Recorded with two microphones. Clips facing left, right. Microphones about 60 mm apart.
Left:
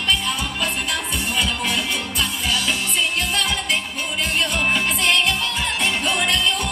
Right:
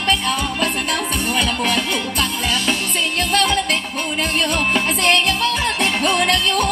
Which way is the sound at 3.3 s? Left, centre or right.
Right.